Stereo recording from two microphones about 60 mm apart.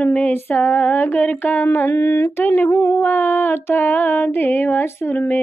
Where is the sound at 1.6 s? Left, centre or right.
Left.